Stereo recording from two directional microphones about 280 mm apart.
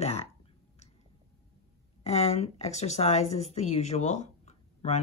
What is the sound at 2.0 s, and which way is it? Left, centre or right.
Speech, left.